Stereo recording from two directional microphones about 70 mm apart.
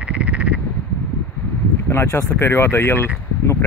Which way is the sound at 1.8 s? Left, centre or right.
Left.